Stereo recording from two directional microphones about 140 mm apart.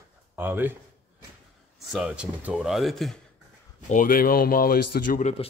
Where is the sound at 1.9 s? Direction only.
5° right (ahead or behind).